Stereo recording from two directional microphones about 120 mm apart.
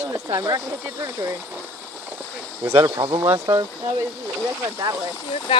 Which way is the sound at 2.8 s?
40° right (ahead or behind).